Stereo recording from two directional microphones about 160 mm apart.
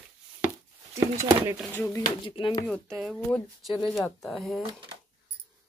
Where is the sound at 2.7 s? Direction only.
Centre (ahead or behind).